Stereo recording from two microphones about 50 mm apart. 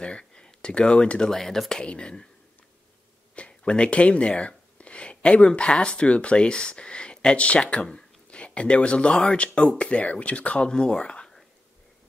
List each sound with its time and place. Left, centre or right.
0.0 s speech: centre
1.3 s speech: centre
3.3 s speech: left